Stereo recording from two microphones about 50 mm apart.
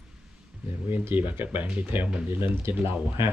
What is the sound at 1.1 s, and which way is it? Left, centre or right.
Speech, right.